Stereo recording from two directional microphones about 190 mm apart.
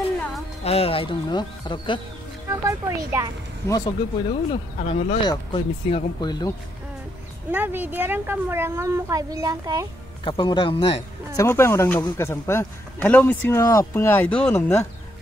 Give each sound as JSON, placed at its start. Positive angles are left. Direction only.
{"t": 0.7, "sound": "speech", "side_deg": 30}
{"t": 2.5, "sound": "a child's voice", "side_deg": -15}
{"t": 3.6, "sound": "speech", "side_deg": 20}
{"t": 7.5, "sound": "a child's voice", "side_deg": -10}
{"t": 10.2, "sound": "speech", "side_deg": 25}
{"t": 11.4, "sound": "a man's voice", "side_deg": 15}